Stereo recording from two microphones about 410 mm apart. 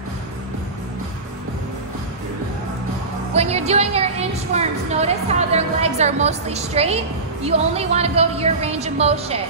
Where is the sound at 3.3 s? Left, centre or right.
Centre.